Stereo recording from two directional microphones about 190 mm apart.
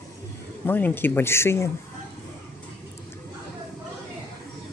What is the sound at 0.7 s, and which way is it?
Speech, 10° left (ahead or behind).